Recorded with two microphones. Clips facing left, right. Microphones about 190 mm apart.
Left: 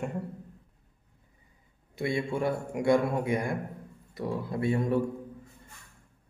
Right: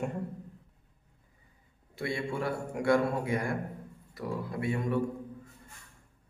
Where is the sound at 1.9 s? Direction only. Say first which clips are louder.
Left 4 dB; 20° left (ahead or behind).